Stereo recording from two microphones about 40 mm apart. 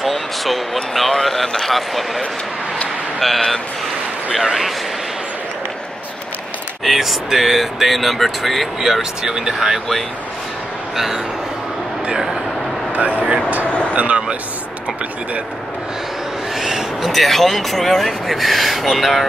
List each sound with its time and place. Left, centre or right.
0.0 s speech: centre
4.3 s speech: centre
6.8 s speech: centre
9.2 s speech: centre
12.9 s speech: right
13.7 s a sound: left
13.9 s speech: right
16.5 s speech: centre